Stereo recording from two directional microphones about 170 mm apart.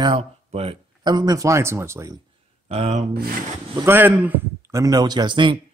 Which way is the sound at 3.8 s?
10° right (ahead or behind).